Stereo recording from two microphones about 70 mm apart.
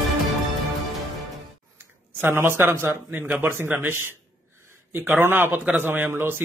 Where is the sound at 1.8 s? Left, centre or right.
Right.